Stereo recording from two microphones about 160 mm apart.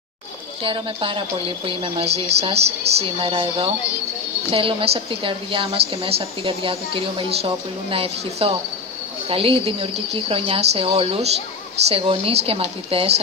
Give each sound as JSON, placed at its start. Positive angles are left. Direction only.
{"t": 0.7, "sound": "a woman's voice", "side_deg": -35}